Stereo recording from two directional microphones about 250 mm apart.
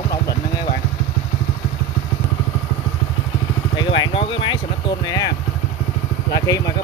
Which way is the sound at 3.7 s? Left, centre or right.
Centre.